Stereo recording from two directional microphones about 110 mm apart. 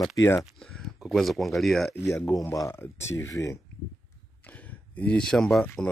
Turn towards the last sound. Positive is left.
turn(degrees=10)  # may be behind; listen again after turning